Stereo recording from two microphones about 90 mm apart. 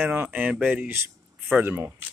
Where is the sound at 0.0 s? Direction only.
20° right (ahead or behind).